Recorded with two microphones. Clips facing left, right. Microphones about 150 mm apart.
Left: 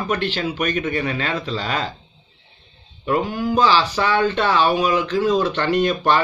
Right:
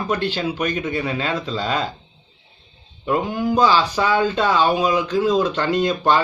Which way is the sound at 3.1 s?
20° right (ahead or behind).